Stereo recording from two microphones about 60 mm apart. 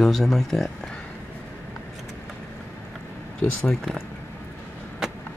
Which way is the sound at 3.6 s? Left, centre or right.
Centre.